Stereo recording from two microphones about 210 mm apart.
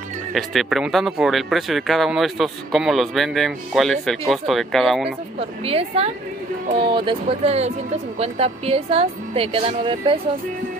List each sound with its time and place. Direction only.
0.3 s speech: centre (ahead or behind)
5.7 s speech: 30° right (ahead or behind)